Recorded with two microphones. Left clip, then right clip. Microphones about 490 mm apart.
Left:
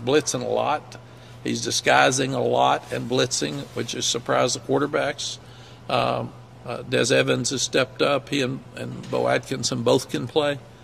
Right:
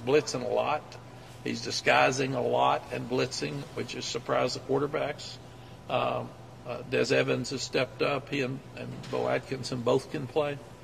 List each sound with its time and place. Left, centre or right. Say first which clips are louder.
0.0 s speech: left 5 dB; left